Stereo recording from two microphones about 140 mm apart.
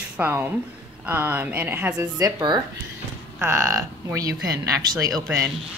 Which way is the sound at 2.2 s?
25° right (ahead or behind).